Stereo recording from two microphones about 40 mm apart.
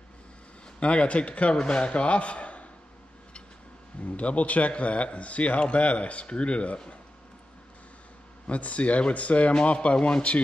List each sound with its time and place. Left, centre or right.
0.7 s speech: left
4.0 s speech: left
8.5 s speech: left